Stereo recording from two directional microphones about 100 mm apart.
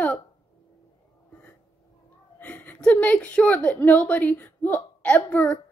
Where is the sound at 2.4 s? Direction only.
15° left (ahead or behind).